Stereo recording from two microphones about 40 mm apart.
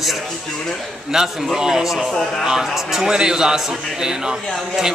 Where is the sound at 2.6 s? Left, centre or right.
Centre.